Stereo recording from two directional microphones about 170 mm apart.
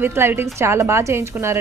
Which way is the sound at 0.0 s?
15° right (ahead or behind).